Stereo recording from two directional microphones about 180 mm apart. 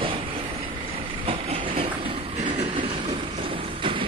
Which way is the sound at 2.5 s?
30° right (ahead or behind).